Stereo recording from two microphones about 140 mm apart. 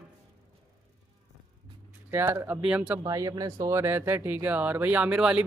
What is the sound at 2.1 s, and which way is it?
Speech, 15° right (ahead or behind).